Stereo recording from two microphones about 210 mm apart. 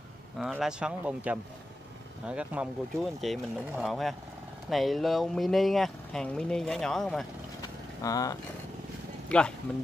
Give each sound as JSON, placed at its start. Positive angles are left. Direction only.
{"t": 0.4, "sound": "speech", "side_deg": 0}
{"t": 8.0, "sound": "speech", "side_deg": 15}
{"t": 9.3, "sound": "speech", "side_deg": 5}